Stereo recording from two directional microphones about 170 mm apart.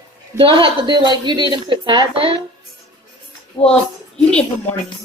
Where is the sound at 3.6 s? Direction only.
30° left (ahead or behind).